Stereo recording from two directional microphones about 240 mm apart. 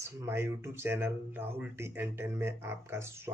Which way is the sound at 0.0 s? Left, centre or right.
Centre.